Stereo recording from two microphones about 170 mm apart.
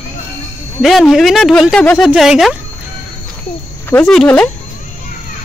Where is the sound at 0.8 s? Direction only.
Centre (ahead or behind).